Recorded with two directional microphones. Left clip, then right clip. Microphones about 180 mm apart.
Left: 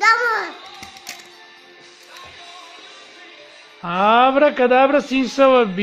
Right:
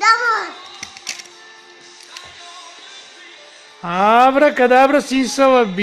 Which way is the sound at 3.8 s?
10° right (ahead or behind).